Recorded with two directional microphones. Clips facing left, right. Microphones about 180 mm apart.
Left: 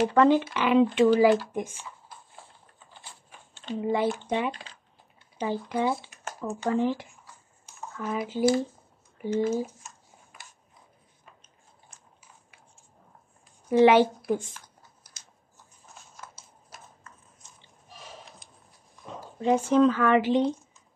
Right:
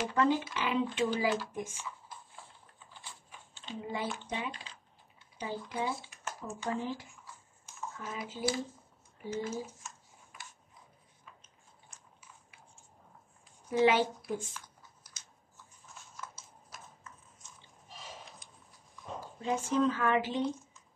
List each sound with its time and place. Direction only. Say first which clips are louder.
0.0 s speech: left 9 dB; 70° left (ahead or behind)
3.3 s speech: left 11 dB; 65° left (ahead or behind)
8.0 s speech: left 11 dB; 60° left (ahead or behind)
13.7 s speech: left 8 dB; 70° left (ahead or behind)
19.4 s speech: left 9 dB; 75° left (ahead or behind)